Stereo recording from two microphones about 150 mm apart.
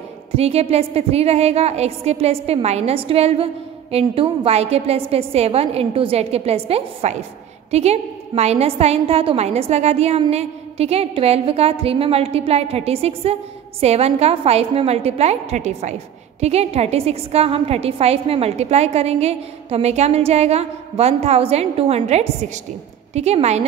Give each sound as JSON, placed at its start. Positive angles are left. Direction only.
{"t": 0.4, "sound": "a woman's voice", "side_deg": -45}